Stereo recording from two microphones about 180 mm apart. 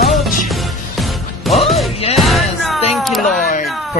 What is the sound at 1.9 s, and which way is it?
Music, 35° left (ahead or behind).